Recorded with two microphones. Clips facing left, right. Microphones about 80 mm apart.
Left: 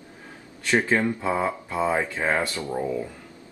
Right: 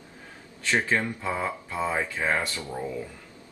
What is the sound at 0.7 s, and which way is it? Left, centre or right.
Speech, centre.